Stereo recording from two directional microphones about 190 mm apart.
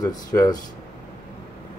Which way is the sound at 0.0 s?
20° left (ahead or behind).